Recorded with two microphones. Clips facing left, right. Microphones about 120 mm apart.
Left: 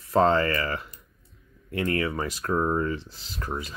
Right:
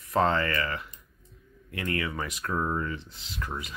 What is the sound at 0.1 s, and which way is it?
Speech, 30° left (ahead or behind).